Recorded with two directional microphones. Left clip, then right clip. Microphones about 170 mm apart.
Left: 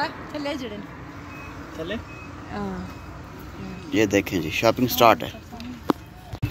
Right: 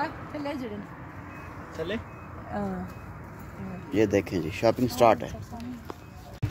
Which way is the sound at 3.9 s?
5° right (ahead or behind).